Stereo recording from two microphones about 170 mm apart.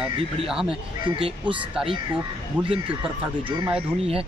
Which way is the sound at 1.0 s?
30° right (ahead or behind).